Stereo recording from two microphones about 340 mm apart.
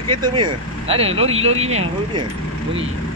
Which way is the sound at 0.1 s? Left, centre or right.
Centre.